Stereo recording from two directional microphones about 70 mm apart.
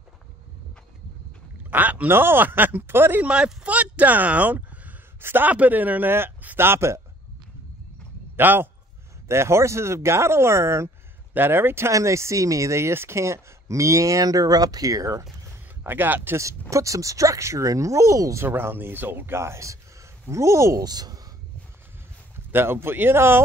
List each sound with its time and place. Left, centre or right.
1.7 s speech: right
3.3 s speech: centre; by 7.0 s right
8.4 s speech: right
9.3 s speech: right
15.8 s speech: right
16.7 s speech: right
18.4 s speech: right
20.8 s speech: right
22.5 s speech: right